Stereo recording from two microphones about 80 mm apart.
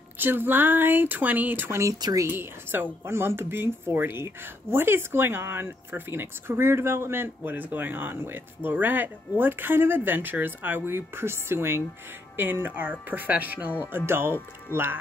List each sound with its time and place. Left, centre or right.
0.2 s speech: right